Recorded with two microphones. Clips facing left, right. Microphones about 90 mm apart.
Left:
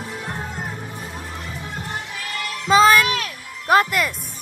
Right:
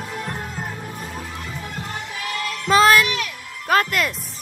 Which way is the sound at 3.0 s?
40° left (ahead or behind).